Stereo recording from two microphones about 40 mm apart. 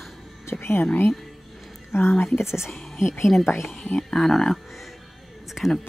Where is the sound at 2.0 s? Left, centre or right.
Left.